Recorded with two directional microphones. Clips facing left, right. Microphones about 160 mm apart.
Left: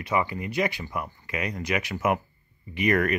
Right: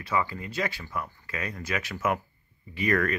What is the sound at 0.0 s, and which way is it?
Speech, 20° left (ahead or behind).